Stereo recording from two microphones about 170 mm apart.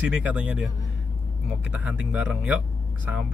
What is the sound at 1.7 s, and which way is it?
Speech, 10° right (ahead or behind).